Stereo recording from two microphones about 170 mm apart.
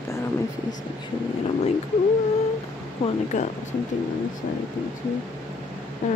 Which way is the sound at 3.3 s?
45° left (ahead or behind).